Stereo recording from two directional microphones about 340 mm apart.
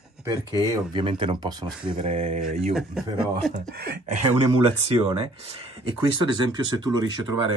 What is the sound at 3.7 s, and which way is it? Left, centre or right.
Speech, right.